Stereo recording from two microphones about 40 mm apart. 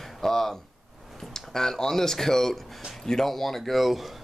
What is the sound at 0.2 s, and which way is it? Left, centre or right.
Speech, centre.